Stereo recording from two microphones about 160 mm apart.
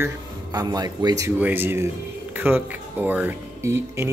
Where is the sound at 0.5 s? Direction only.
25° right (ahead or behind).